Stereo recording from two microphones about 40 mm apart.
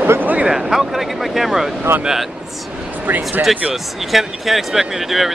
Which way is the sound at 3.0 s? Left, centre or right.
Right.